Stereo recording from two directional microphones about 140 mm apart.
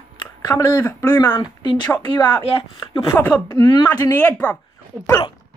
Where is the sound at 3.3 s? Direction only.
20° left (ahead or behind).